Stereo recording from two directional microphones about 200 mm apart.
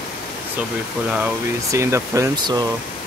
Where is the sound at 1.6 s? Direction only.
15° right (ahead or behind).